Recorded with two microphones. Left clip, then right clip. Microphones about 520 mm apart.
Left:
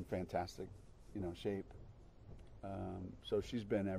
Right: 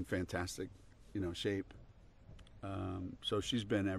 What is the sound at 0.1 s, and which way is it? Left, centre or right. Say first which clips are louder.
Speech: even; right.